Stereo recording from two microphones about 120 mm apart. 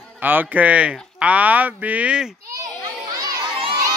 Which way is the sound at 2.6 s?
30° right (ahead or behind).